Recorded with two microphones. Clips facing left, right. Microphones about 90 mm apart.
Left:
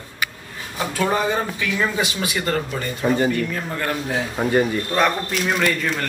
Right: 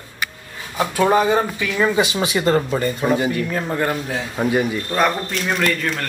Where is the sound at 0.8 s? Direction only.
5° right (ahead or behind).